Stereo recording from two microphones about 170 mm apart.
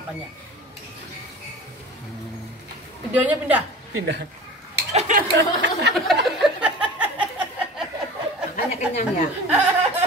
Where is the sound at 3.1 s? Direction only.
10° right (ahead or behind).